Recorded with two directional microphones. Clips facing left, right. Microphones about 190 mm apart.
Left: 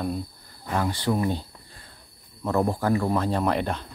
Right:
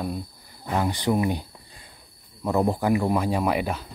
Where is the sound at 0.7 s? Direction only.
20° right (ahead or behind).